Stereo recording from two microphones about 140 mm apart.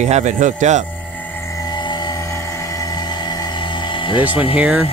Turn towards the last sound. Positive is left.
turn(degrees=-10)  # may be behind; listen again after turning